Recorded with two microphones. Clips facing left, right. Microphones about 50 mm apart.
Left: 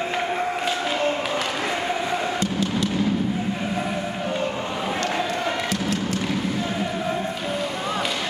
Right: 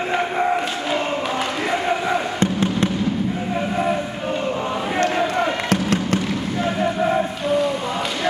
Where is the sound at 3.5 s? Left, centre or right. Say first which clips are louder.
Right 5 dB; centre.